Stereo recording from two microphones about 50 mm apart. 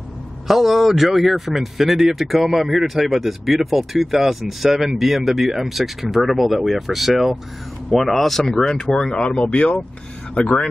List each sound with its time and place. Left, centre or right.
0.5 s speech: centre; by 10.5 s left